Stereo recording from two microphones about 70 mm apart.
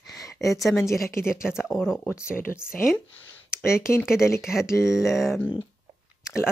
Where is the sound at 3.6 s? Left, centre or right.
Left.